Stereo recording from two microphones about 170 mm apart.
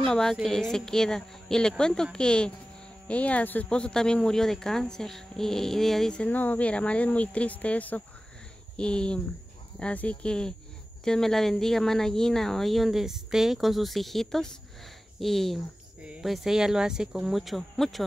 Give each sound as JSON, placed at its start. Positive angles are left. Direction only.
{"t": 0.0, "sound": "speech", "side_deg": 0}